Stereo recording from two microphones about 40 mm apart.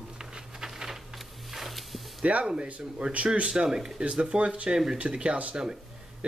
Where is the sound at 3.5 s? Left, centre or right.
Centre.